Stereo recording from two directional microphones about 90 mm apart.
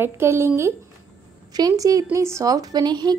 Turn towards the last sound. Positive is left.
turn(degrees=-50)  # may be behind; listen again after turning